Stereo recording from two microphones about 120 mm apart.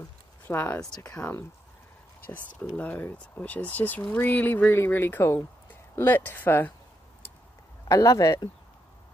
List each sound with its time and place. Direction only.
0.5 s speech: 20° left (ahead or behind)
2.7 s speech: 15° left (ahead or behind)
7.9 s speech: 25° left (ahead or behind)